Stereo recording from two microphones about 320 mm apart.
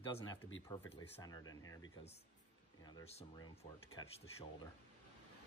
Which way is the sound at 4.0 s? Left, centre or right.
Centre.